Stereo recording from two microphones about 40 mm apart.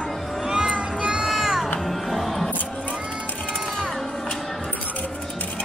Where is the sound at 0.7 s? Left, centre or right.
Right.